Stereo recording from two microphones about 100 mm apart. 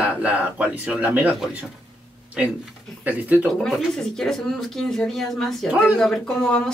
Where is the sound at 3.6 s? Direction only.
5° left (ahead or behind).